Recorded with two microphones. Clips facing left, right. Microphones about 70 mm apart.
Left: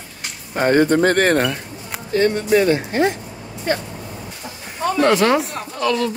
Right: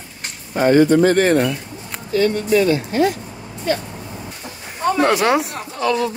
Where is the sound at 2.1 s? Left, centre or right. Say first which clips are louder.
Even; left.